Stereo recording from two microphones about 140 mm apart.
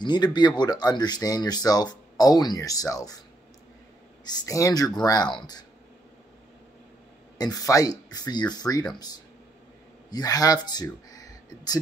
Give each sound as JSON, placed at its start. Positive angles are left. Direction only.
{"t": 0.0, "sound": "speech", "side_deg": 30}
{"t": 4.2, "sound": "speech", "side_deg": 30}
{"t": 7.3, "sound": "speech", "side_deg": 25}
{"t": 10.1, "sound": "speech", "side_deg": 25}